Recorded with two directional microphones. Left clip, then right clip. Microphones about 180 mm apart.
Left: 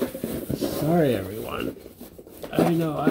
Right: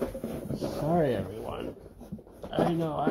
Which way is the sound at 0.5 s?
45° left (ahead or behind).